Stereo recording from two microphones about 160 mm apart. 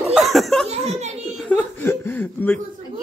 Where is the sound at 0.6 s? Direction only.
40° right (ahead or behind).